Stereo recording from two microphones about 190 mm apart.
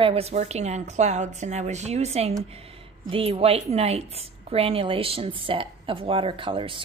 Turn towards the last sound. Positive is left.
turn(degrees=-30)  # may be behind; listen again after turning